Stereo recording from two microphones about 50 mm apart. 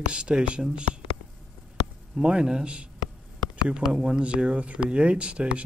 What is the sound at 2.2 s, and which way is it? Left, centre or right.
Speech, centre.